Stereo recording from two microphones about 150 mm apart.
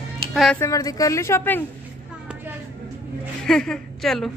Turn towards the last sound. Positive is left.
turn(degrees=0)  # may be behind; listen again after turning